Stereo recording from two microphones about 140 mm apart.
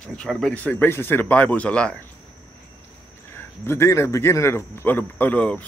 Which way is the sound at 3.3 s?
20° left (ahead or behind).